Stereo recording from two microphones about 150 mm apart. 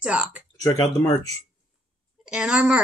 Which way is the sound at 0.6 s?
25° left (ahead or behind).